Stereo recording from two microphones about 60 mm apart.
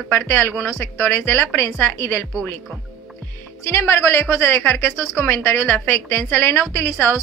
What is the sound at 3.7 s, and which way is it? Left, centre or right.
Speech, left.